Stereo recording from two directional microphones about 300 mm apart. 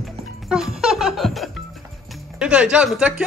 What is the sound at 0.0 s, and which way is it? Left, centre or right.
Music, centre.